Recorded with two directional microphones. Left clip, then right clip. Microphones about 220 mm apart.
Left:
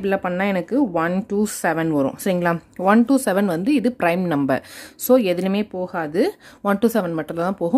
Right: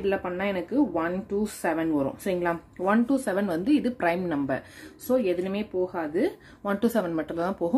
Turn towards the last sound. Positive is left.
turn(degrees=30)  # may be behind; listen again after turning